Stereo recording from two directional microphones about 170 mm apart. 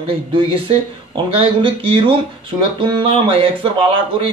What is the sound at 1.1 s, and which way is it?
Speech, 30° right (ahead or behind).